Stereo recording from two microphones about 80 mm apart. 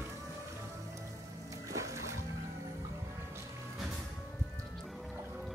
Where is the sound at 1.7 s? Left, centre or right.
Right.